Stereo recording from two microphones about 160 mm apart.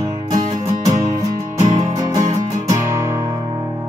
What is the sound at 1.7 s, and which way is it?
Music, 20° right (ahead or behind).